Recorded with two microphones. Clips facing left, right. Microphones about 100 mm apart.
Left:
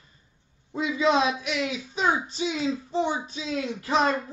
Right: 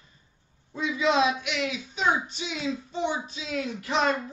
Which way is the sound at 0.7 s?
25° left (ahead or behind).